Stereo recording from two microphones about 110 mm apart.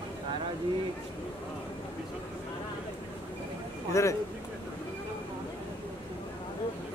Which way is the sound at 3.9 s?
30° left (ahead or behind).